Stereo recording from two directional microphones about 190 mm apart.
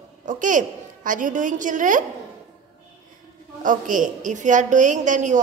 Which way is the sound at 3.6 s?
45° right (ahead or behind).